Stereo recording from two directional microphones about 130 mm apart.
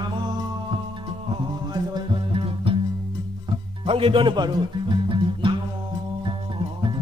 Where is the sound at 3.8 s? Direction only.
45° right (ahead or behind).